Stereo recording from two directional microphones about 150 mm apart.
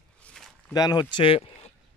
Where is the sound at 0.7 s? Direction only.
25° left (ahead or behind).